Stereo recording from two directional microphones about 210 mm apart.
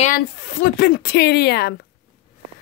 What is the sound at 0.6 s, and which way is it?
Speech, 50° left (ahead or behind).